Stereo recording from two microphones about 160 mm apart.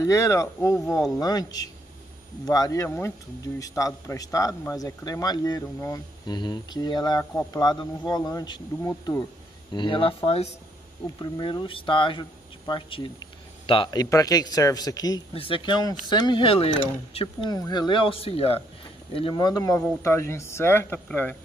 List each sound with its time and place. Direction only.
0.0 s a man's voice: 20° left (ahead or behind); by 10.5 s 40° left (ahead or behind)
11.1 s a man's voice: 30° left (ahead or behind)
15.3 s a man's voice: 35° left (ahead or behind); by 21.4 s 10° left (ahead or behind)